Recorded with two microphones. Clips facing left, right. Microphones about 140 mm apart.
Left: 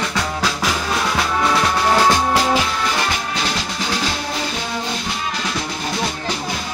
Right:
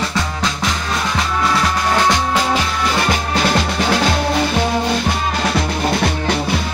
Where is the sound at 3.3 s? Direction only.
55° right (ahead or behind).